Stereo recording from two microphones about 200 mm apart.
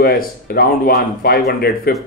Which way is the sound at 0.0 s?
50° left (ahead or behind).